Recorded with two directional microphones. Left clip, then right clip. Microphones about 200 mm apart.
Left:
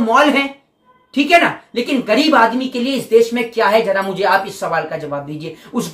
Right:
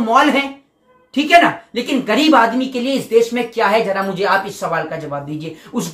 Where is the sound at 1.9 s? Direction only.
5° left (ahead or behind).